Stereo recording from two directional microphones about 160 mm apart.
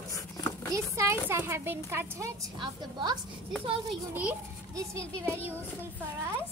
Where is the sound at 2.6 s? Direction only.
25° right (ahead or behind).